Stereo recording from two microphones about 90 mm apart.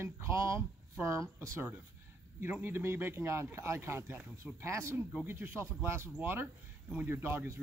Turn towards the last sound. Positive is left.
turn(degrees=-25)  # may be behind; listen again after turning